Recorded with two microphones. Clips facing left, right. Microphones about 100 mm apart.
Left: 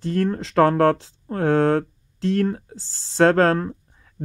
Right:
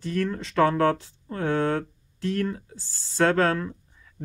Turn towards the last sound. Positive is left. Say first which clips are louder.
# left 5 dB
turn(degrees=50)  # may be behind; listen again after turning